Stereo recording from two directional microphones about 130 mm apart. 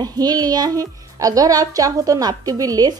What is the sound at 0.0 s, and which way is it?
Speech, 30° right (ahead or behind).